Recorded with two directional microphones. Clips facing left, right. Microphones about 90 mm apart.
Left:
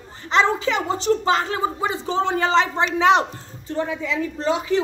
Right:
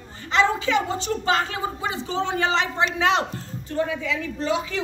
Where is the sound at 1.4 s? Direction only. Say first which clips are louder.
Left 4 dB; 30° left (ahead or behind).